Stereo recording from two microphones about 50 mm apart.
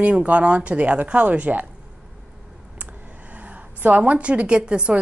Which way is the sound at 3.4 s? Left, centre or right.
Right.